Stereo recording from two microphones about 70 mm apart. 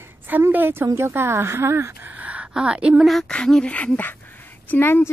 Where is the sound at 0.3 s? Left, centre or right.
Right.